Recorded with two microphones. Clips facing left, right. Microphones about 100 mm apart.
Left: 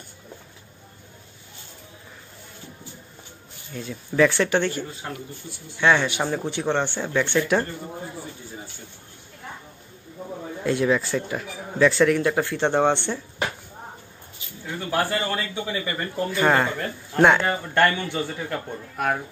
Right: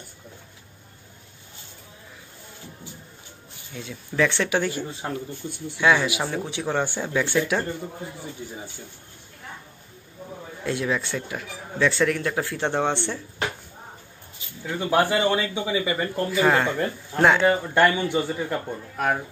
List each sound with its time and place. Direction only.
3.7 s a man's voice: centre (ahead or behind)
10.6 s speech: centre (ahead or behind)
14.8 s a man's voice: 20° right (ahead or behind); by 17.8 s centre (ahead or behind)
17.8 s a man's voice: 15° right (ahead or behind)